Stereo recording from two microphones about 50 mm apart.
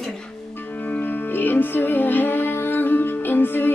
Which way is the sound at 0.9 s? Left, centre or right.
Left.